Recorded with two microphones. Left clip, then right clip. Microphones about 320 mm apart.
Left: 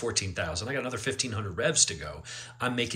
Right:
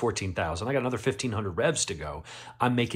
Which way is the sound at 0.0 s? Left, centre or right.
Centre.